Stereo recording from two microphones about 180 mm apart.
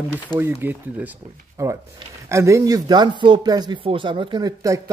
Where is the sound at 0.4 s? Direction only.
10° right (ahead or behind).